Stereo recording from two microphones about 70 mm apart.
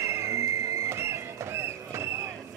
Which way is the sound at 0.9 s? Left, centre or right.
Right.